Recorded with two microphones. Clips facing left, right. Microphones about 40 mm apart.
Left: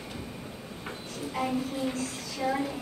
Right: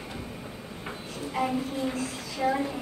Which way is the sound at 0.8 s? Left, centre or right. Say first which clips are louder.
Right 1 dB; centre.